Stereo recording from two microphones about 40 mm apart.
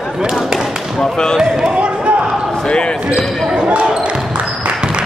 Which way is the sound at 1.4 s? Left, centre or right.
Centre.